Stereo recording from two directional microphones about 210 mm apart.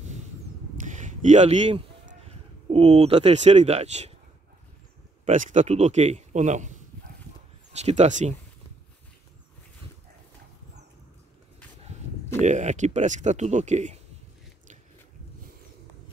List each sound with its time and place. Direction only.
0.7 s a sound: 35° right (ahead or behind)
5.2 s a man's voice: 35° right (ahead or behind)
12.4 s a man's voice: 35° right (ahead or behind)